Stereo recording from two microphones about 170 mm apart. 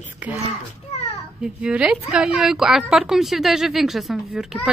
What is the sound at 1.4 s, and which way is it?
A woman's voice, 5° right (ahead or behind).